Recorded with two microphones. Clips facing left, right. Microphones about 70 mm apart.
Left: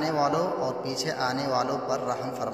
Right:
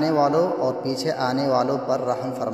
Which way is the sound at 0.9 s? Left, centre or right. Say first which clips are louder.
Right 5 dB; right.